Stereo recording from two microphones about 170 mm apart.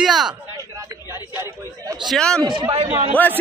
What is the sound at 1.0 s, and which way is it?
A man's voice, 15° right (ahead or behind).